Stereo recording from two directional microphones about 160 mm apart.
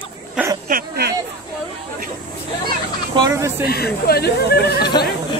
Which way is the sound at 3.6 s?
75° left (ahead or behind).